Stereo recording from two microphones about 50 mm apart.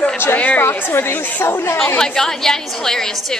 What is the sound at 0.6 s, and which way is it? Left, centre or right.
A woman's voice, left.